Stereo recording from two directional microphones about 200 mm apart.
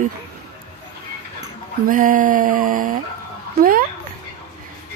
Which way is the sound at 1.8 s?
45° right (ahead or behind).